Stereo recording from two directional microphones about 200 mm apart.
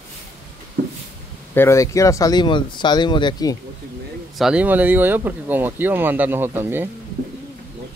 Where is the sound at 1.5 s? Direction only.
10° left (ahead or behind).